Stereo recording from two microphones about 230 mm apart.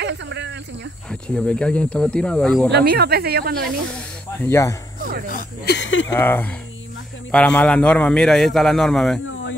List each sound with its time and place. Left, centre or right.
0.0 s snake: right
1.3 s a man's voice: centre
2.7 s speech: right
4.4 s speech: centre
5.3 s speech: left
6.0 s a man's voice: centre
9.2 s a sound: left